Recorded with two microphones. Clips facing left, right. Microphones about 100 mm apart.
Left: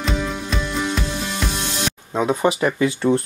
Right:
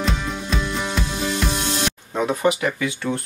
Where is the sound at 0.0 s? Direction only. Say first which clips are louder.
Left 1 dB; centre (ahead or behind).